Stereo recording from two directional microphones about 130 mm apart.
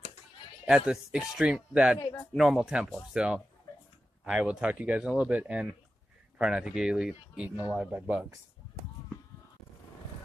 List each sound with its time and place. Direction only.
0.7 s speech: 5° right (ahead or behind)